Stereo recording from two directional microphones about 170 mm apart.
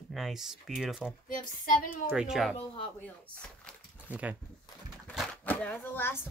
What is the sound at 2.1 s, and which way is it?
Speech, centre (ahead or behind).